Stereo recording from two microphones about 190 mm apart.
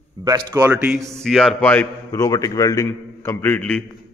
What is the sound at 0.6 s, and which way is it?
Speech, 10° right (ahead or behind).